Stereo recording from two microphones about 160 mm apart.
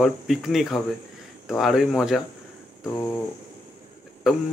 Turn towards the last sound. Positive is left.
turn(degrees=-5)  # may be behind; listen again after turning